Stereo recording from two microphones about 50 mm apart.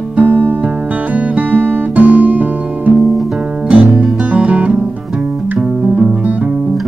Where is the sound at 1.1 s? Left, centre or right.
Right.